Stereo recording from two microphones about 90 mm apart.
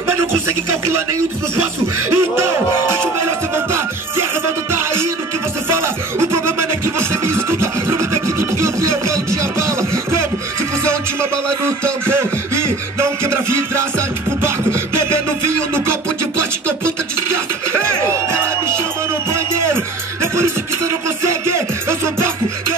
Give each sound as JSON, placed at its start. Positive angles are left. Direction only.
{"t": 0.1, "sound": "music", "side_deg": -30}
{"t": 1.6, "sound": "speech", "side_deg": -30}
{"t": 3.5, "sound": "music", "side_deg": -30}
{"t": 5.7, "sound": "a sound", "side_deg": -30}
{"t": 10.8, "sound": "beatboxing", "side_deg": -30}
{"t": 13.7, "sound": "music", "side_deg": -30}
{"t": 18.0, "sound": "music", "side_deg": -30}